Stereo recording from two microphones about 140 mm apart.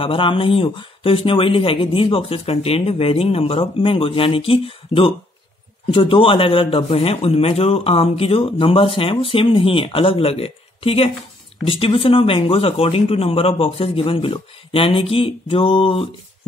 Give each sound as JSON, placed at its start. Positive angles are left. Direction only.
{"t": 0.0, "sound": "a man's voice", "side_deg": 40}